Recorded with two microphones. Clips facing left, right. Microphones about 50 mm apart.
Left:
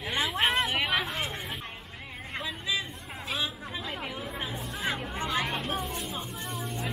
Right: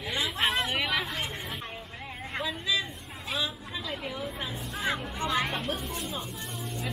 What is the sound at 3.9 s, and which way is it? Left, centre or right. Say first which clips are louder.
Chatter: right 1 dB; centre.